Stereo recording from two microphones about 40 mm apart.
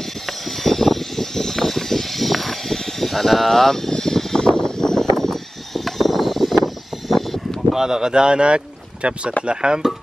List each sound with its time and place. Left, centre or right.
0.3 s vehicle: centre
7.7 s speech: centre